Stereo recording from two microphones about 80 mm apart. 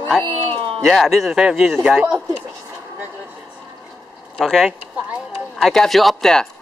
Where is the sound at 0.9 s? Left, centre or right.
Centre.